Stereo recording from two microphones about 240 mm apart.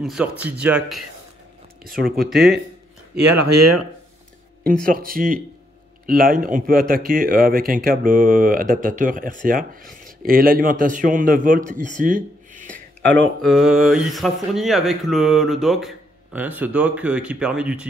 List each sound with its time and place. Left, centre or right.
0.0 s speech: centre
1.8 s speech: right
2.1 s speech: centre
3.4 s speech: right
4.8 s speech: right
12.6 s speech: centre